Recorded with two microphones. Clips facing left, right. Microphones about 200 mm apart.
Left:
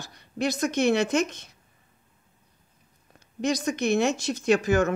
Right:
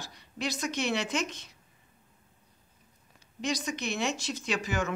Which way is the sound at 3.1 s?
50° left (ahead or behind).